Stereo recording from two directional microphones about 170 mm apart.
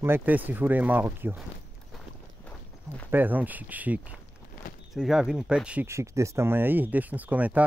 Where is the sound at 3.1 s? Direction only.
10° right (ahead or behind).